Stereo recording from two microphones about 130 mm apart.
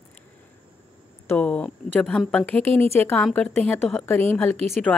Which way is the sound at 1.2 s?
10° left (ahead or behind).